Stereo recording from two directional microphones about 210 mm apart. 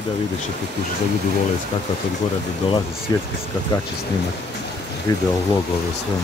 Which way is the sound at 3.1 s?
15° left (ahead or behind).